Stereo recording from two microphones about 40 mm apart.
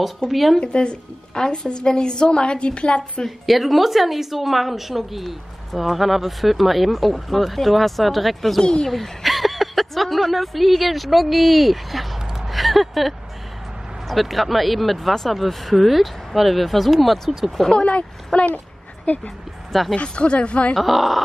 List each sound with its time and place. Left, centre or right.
0.3 s a woman's voice: centre
0.6 s a woman's voice: left
3.3 s a woman's voice: centre
12.4 s a sound: centre
14.0 s a woman's voice: centre
17.8 s speech: left
20.7 s a woman's voice: centre